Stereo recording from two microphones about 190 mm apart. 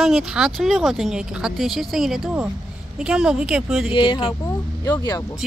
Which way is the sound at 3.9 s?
25° left (ahead or behind).